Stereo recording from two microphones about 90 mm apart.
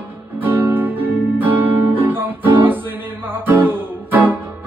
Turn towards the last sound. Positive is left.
turn(degrees=-20)  # may be behind; listen again after turning